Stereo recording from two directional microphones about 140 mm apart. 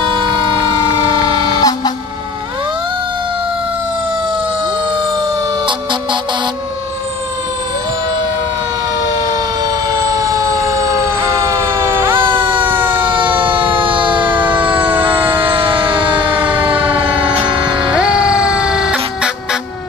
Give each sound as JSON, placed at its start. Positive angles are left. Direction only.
{"t": 0.9, "sound": "vehicle", "side_deg": 25}
{"t": 11.8, "sound": "fire engine", "side_deg": -15}
{"t": 12.3, "sound": "emergency vehicle", "side_deg": -15}
{"t": 14.3, "sound": "fire engine", "side_deg": -15}
{"t": 15.7, "sound": "siren", "side_deg": -35}
{"t": 17.9, "sound": "music", "side_deg": -5}